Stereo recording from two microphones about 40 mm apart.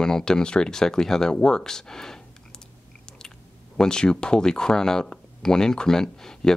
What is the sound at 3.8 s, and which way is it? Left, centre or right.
Speech, centre.